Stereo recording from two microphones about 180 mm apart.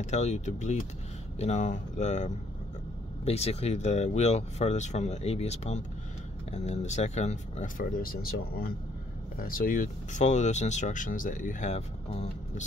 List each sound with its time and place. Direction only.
0.0 s speech: 40° left (ahead or behind)